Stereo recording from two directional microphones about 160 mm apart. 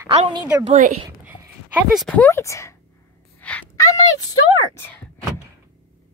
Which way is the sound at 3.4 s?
10° left (ahead or behind).